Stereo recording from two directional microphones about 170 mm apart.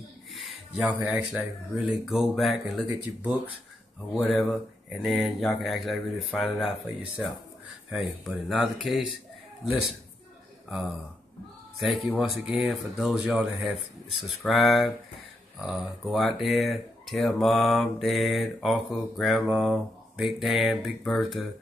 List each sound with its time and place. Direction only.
0.3 s speech: centre (ahead or behind)
7.9 s speech: centre (ahead or behind)